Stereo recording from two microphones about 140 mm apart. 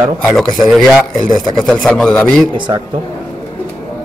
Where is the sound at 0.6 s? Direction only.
Centre (ahead or behind).